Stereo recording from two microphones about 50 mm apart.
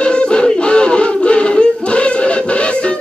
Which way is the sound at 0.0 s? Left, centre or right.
Centre.